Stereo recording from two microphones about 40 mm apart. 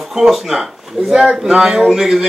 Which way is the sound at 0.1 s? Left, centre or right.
Centre.